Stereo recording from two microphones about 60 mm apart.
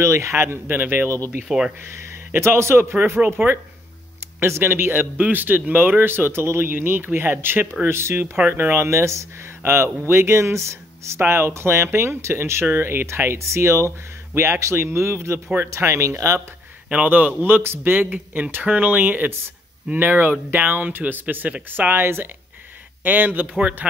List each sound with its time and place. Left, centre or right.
0.0 s speech: right
1.5 s speech: centre
2.3 s a man's voice: right
8.4 s speech: right
8.7 s speech: right
11.1 s speech: right
16.9 s speech: right
17.4 s a man's voice: right